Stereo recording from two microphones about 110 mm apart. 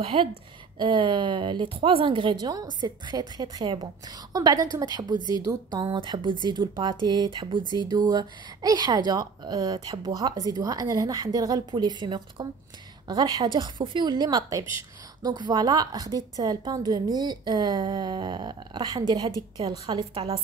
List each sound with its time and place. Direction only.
0.0 s a woman's voice: 55° right (ahead or behind); by 5.9 s 35° right (ahead or behind)
5.9 s a woman's voice: 50° right (ahead or behind)
11.7 s a woman's voice: 45° right (ahead or behind)
20.2 s a woman's voice: 60° right (ahead or behind)